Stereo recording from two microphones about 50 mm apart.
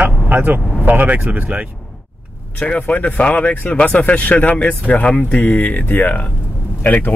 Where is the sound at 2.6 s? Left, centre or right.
Left.